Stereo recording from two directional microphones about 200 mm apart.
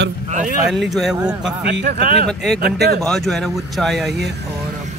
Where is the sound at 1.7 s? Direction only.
55° right (ahead or behind).